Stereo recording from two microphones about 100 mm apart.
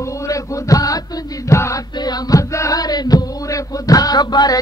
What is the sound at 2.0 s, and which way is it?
Chant, 40° left (ahead or behind).